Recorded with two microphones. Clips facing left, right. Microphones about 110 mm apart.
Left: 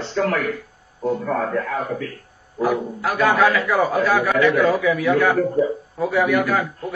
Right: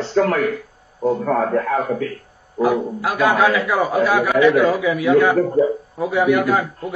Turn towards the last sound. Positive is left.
turn(degrees=-20)  # may be behind; listen again after turning